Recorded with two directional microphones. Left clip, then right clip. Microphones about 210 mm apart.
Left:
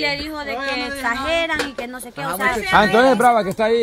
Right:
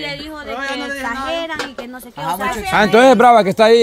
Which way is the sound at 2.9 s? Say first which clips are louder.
Right 10 dB; 45° right (ahead or behind).